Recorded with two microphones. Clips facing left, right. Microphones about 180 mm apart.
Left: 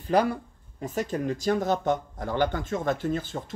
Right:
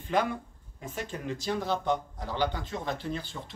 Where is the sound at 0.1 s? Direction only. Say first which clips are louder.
Left 5 dB; 40° left (ahead or behind).